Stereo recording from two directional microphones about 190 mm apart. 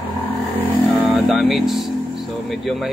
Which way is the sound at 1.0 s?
Centre (ahead or behind).